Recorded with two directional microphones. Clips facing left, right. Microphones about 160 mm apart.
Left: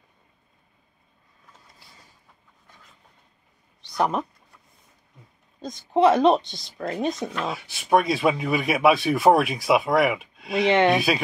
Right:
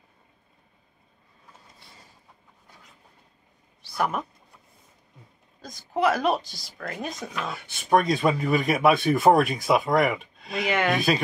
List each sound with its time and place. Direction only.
3.9 s speech: 20° left (ahead or behind)
5.6 s speech: 25° left (ahead or behind)
7.3 s speech: centre (ahead or behind)
10.7 s speech: 25° left (ahead or behind)